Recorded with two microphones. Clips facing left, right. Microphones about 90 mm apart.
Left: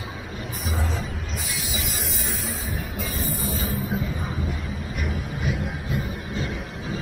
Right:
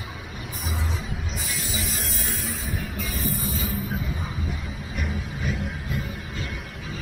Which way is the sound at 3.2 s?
35° left (ahead or behind).